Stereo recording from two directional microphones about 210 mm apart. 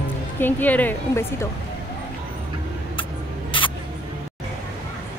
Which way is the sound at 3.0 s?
25° left (ahead or behind).